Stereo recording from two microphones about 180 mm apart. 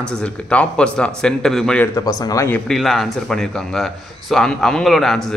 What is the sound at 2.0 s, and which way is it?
Speech, 20° left (ahead or behind).